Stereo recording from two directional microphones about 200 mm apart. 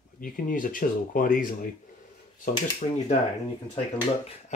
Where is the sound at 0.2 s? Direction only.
45° left (ahead or behind).